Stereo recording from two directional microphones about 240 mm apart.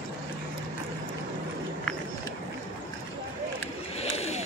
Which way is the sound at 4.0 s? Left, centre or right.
Left.